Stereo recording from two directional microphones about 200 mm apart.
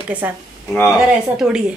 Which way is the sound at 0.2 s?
10° right (ahead or behind).